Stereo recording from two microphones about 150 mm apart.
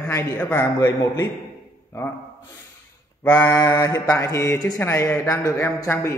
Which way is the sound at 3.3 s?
20° left (ahead or behind).